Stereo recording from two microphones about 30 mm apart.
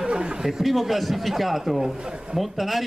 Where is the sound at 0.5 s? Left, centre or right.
Centre.